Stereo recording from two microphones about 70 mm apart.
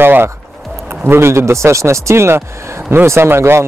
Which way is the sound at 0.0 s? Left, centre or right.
Right.